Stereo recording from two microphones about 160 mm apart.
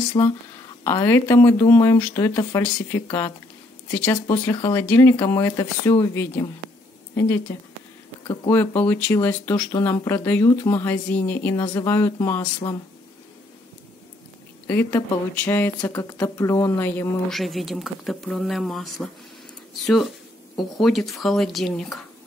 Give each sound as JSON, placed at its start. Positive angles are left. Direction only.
{"t": 0.2, "sound": "speech", "side_deg": 30}
{"t": 0.8, "sound": "speech", "side_deg": 15}
{"t": 14.7, "sound": "speech", "side_deg": 10}
{"t": 17.3, "sound": "speech", "side_deg": 0}